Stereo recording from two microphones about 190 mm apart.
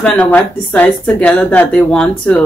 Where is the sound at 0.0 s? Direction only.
5° left (ahead or behind).